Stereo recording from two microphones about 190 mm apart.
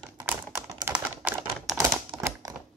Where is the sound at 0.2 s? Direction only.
10° right (ahead or behind).